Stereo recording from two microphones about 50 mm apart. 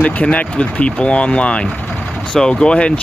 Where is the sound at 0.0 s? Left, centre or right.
Left.